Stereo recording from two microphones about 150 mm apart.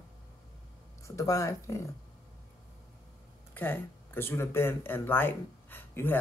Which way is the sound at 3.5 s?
15° left (ahead or behind).